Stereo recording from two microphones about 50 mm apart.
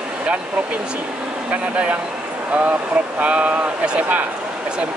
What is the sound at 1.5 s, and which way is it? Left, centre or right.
Speech, right.